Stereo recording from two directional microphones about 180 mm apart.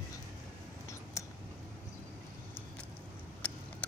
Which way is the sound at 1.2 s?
15° left (ahead or behind).